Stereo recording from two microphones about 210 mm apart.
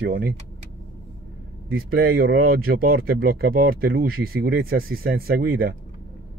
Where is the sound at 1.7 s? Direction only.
45° right (ahead or behind).